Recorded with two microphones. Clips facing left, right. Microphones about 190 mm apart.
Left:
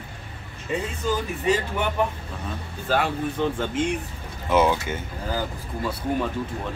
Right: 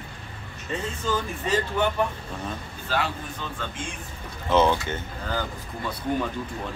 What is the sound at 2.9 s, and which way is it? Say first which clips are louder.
Speech: left 5 dB; 55° left (ahead or behind).